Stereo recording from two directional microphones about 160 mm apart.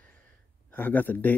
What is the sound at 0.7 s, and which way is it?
Speech, 10° left (ahead or behind).